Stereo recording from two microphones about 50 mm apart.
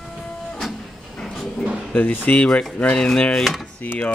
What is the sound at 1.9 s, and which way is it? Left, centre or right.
Speech, left.